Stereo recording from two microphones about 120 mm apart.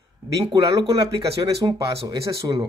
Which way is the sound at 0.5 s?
35° right (ahead or behind).